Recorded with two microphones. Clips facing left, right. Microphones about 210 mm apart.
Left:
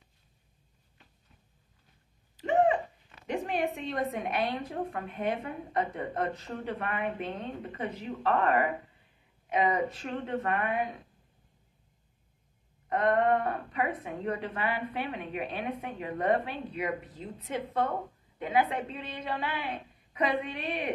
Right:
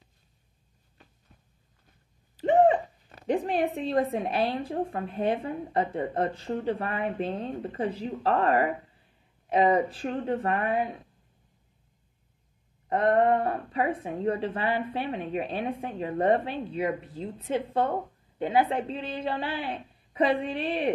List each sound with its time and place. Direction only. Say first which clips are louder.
2.4 s speech: right 5 dB; 35° right (ahead or behind)
12.8 s speech: right 3 dB; 30° right (ahead or behind)